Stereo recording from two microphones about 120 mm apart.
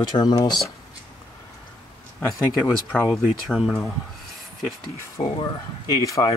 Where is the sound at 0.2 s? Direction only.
35° left (ahead or behind).